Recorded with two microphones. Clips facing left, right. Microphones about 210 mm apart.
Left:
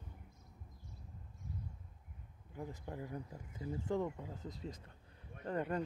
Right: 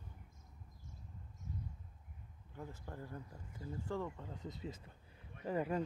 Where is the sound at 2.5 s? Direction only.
15° left (ahead or behind).